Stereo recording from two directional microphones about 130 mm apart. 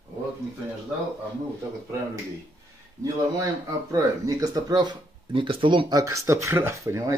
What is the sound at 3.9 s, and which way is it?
Speech, 30° right (ahead or behind).